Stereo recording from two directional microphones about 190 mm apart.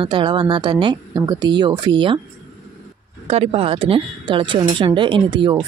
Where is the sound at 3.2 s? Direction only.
30° right (ahead or behind).